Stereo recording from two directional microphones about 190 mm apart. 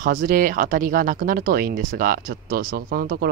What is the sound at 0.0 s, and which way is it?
Speech, 45° right (ahead or behind).